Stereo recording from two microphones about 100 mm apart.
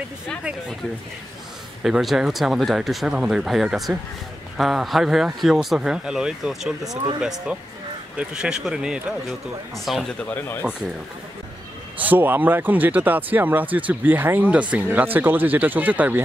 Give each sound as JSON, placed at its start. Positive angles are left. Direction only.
{"t": 0.4, "sound": "speech", "side_deg": -10}
{"t": 1.8, "sound": "speech", "side_deg": -5}
{"t": 10.2, "sound": "speech", "side_deg": 15}
{"t": 12.0, "sound": "speech", "side_deg": -20}